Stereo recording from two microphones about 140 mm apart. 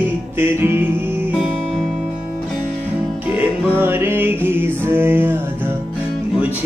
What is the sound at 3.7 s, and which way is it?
Music, 15° right (ahead or behind).